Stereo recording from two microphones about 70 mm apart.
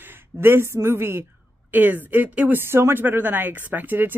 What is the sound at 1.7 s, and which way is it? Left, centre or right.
Speech, right.